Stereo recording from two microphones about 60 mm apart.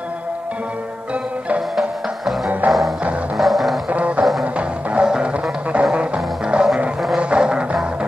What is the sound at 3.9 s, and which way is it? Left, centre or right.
Music, right.